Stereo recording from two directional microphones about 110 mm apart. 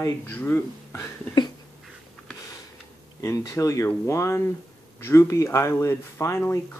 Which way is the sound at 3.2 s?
30° left (ahead or behind).